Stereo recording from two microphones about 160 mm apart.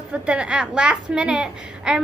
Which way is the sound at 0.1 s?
5° right (ahead or behind).